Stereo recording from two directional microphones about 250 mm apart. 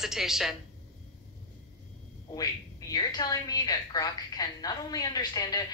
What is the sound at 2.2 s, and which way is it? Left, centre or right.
A woman's voice, centre.